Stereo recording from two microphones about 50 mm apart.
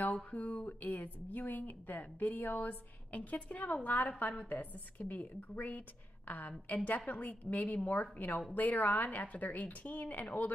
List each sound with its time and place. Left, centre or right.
0.0 s speech: left